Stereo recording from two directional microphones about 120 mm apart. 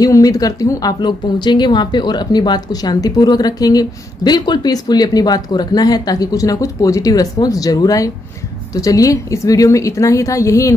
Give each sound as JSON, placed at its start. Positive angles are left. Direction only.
{"t": 0.0, "sound": "a woman's voice", "side_deg": 30}